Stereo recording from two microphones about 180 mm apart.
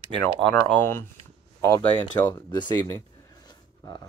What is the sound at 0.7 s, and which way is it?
Speech, 10° left (ahead or behind).